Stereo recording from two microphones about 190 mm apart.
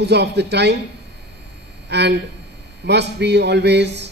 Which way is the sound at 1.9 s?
60° right (ahead or behind).